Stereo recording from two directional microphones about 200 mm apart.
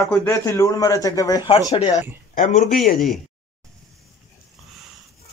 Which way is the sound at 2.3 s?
35° left (ahead or behind).